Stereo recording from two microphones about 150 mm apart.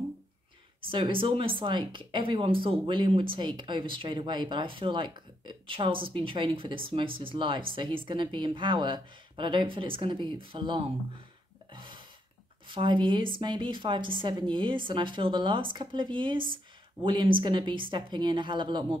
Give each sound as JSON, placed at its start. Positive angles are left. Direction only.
{"t": 0.8, "sound": "speech", "side_deg": -35}
{"t": 11.7, "sound": "a sound", "side_deg": -35}
{"t": 12.6, "sound": "speech", "side_deg": -35}